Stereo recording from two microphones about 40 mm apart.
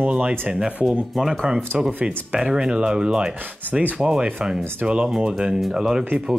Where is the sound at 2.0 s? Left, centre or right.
Right.